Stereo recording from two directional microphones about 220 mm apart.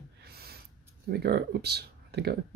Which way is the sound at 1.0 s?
45° right (ahead or behind).